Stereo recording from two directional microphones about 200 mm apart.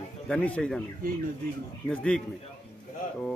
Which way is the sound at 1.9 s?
5° left (ahead or behind).